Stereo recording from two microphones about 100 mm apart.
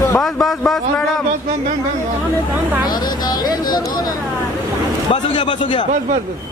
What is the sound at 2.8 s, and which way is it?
Speech, 45° left (ahead or behind).